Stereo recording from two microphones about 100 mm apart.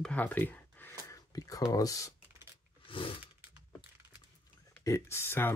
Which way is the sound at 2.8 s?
60° left (ahead or behind).